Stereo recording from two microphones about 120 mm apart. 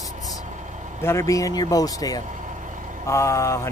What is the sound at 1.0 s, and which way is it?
Speech, 25° left (ahead or behind).